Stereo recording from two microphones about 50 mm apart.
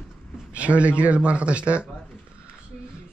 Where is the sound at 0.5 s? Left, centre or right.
Right.